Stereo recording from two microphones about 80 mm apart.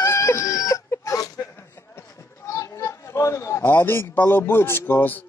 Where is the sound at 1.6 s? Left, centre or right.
Left.